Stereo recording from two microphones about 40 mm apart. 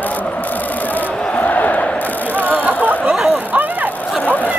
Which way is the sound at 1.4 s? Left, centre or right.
Left.